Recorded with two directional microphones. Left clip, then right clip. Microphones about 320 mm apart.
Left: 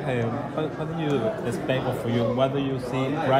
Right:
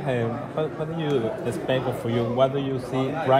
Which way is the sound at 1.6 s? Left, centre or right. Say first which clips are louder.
Right 1 dB; centre.